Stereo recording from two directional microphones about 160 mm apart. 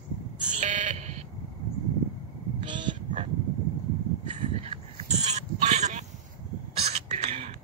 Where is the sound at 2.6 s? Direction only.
30° right (ahead or behind).